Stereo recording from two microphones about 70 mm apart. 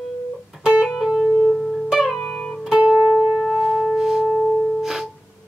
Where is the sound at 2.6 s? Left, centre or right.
Centre.